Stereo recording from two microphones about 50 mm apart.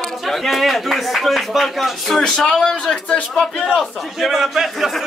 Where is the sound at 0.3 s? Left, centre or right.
Centre.